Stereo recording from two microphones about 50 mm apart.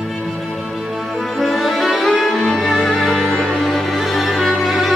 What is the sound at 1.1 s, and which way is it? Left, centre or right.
Music, centre.